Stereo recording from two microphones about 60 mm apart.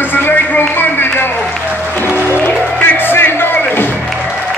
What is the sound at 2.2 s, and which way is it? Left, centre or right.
Music, left.